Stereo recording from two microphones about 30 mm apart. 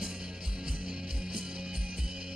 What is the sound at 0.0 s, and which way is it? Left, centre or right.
Music, right.